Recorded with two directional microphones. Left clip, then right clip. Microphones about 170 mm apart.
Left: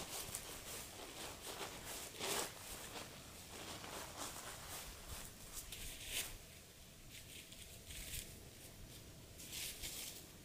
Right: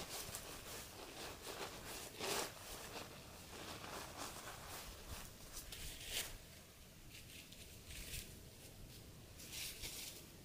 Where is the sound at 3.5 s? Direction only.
5° right (ahead or behind).